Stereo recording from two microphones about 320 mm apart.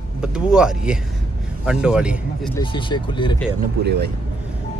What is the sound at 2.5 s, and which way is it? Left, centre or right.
Speech, centre.